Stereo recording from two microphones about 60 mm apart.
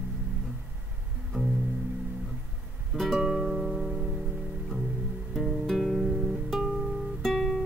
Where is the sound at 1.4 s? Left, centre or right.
Right.